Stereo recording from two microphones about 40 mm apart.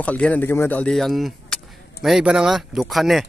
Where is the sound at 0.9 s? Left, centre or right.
Centre.